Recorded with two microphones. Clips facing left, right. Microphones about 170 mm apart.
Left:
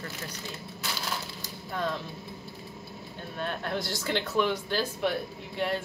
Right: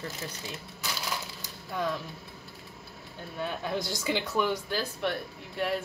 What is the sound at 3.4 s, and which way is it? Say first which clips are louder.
Speech: even; 10° right (ahead or behind).